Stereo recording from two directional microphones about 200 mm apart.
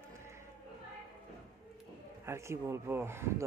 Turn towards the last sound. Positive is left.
turn(degrees=-10)  # may be behind; listen again after turning